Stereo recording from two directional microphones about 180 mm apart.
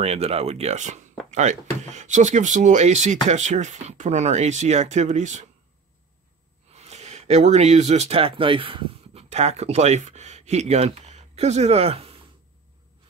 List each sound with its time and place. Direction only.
0.0 s speech: 35° right (ahead or behind)
6.7 s speech: 35° right (ahead or behind)